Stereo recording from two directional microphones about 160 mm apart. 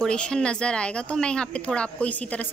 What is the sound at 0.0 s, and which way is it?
Speech, 5° left (ahead or behind).